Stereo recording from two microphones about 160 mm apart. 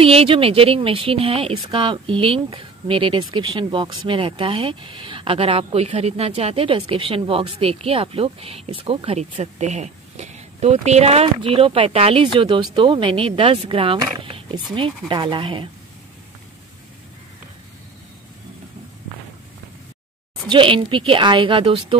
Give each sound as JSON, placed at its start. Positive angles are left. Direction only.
{"t": 0.0, "sound": "speech", "side_deg": -35}
{"t": 20.4, "sound": "speech", "side_deg": -30}